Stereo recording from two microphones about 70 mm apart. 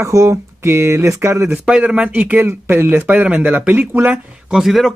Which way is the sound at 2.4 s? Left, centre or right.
Right.